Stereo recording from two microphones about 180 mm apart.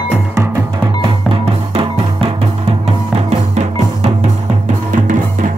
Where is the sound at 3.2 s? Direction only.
35° right (ahead or behind).